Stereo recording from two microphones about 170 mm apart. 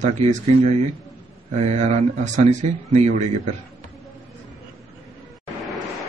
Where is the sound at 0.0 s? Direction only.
40° right (ahead or behind).